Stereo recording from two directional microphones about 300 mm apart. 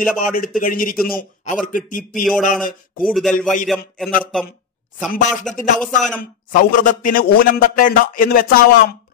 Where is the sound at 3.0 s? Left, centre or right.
Centre.